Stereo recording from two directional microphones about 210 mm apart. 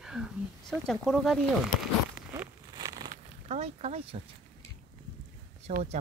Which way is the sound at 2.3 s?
15° right (ahead or behind).